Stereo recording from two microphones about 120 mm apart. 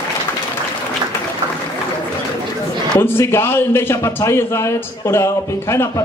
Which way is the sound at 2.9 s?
20° left (ahead or behind).